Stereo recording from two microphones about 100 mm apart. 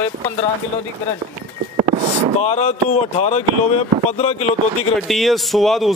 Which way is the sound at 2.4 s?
90° left.